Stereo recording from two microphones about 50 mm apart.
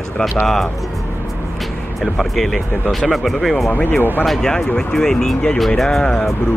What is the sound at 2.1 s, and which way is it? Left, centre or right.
Speech, centre.